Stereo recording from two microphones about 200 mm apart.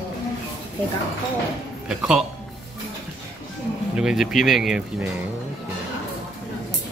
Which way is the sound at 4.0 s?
5° right (ahead or behind).